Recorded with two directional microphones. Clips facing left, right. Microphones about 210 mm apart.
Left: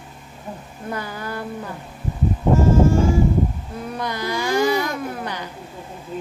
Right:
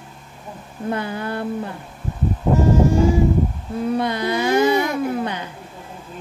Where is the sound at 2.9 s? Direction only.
15° right (ahead or behind).